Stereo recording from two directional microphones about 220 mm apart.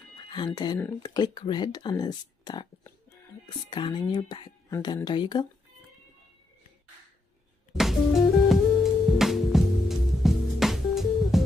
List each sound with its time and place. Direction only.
0.3 s speech: 20° left (ahead or behind)
7.7 s music: centre (ahead or behind)